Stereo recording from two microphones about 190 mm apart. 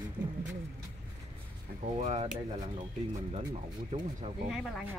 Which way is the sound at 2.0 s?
35° right (ahead or behind).